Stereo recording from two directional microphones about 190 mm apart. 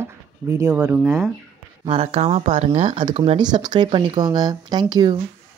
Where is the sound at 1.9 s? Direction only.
35° right (ahead or behind).